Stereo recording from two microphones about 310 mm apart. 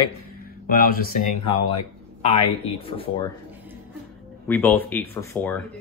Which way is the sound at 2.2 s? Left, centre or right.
Centre.